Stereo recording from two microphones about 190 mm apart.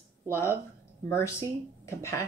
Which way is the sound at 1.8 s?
15° left (ahead or behind).